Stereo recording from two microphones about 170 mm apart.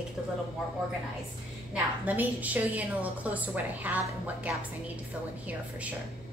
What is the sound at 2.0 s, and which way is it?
A woman's voice, 10° right (ahead or behind).